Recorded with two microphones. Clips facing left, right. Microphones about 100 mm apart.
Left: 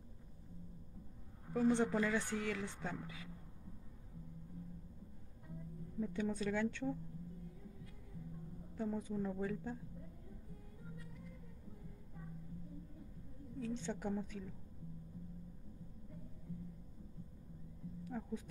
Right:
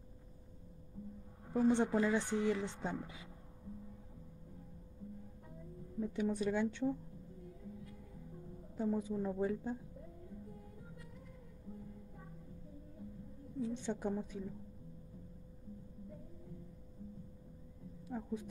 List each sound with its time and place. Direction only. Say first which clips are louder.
1.5 s speech: right 2 dB; 20° right (ahead or behind)
5.9 s a woman's voice: right 3 dB; 10° right (ahead or behind)
8.7 s a woman's voice: right 4 dB; 15° right (ahead or behind)
13.6 s a woman's voice: right 3 dB; 20° right (ahead or behind)
18.0 s speech: right 3 dB; 20° right (ahead or behind)